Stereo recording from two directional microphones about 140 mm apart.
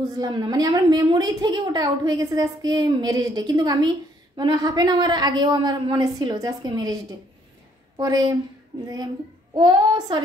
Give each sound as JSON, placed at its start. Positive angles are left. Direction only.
{"t": 0.2, "sound": "a woman's voice", "side_deg": -25}